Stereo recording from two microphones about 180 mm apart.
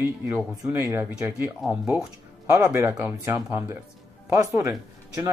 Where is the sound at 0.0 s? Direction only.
15° right (ahead or behind).